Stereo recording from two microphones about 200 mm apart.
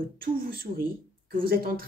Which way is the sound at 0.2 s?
45° right (ahead or behind).